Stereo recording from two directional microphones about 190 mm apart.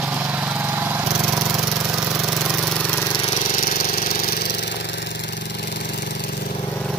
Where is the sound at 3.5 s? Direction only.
50° left (ahead or behind).